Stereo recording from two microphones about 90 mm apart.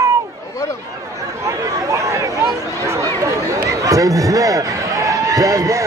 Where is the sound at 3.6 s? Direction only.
40° right (ahead or behind).